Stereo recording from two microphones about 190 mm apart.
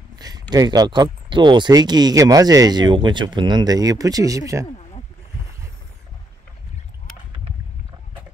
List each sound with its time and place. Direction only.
0.2 s speech: 20° right (ahead or behind)